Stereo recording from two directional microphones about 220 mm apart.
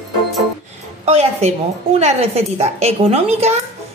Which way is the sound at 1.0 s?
30° right (ahead or behind).